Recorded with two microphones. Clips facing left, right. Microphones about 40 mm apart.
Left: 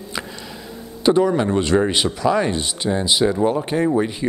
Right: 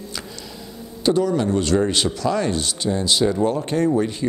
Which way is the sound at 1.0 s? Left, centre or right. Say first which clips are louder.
Left 3 dB; left.